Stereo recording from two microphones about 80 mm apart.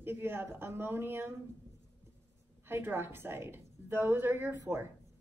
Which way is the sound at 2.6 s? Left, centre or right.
Right.